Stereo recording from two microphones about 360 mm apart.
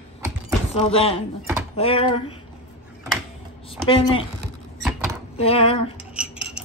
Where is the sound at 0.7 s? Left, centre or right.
Centre.